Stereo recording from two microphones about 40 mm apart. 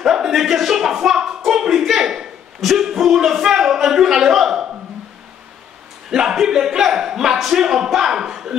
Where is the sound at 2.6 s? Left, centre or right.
Centre.